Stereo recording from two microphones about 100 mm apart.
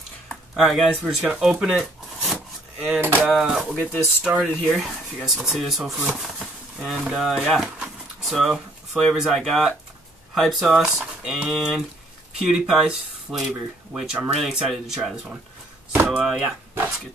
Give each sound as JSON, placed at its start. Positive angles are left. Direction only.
{"t": 0.3, "sound": "speech", "side_deg": 0}
{"t": 2.8, "sound": "speech", "side_deg": -15}
{"t": 3.2, "sound": "speech", "side_deg": 0}
{"t": 3.7, "sound": "speech", "side_deg": 10}
{"t": 15.9, "sound": "a sound", "side_deg": -20}
{"t": 16.3, "sound": "speech", "side_deg": -5}